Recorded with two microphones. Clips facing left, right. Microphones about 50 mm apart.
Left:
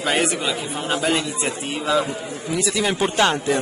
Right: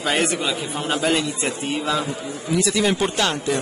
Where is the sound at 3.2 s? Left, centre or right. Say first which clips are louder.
Left 3 dB; left.